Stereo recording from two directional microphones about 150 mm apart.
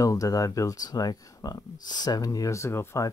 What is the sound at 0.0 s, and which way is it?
Speech, 25° left (ahead or behind).